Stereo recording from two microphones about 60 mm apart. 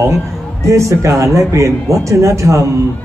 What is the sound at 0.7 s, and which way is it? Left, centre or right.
A man's voice, right.